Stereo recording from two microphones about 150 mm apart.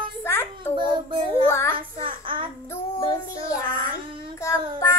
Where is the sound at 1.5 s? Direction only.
15° left (ahead or behind).